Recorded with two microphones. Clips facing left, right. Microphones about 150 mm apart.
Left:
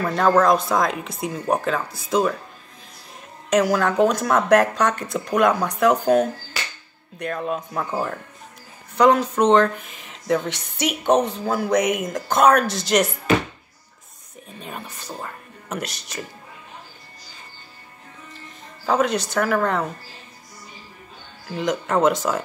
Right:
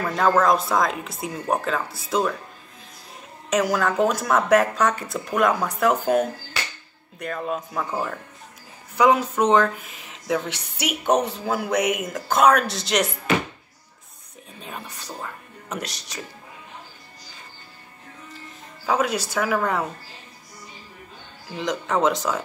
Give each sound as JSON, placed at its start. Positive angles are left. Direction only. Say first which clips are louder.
{"t": 0.0, "sound": "speech", "louder": "left 2 dB", "side_deg": 0}
{"t": 3.4, "sound": "a woman's voice", "louder": "left 3 dB", "side_deg": 0}
{"t": 14.6, "sound": "speech", "louder": "left 1 dB", "side_deg": 0}
{"t": 18.9, "sound": "speech", "louder": "left 2 dB", "side_deg": -5}
{"t": 21.5, "sound": "speech", "louder": "left 3 dB", "side_deg": 0}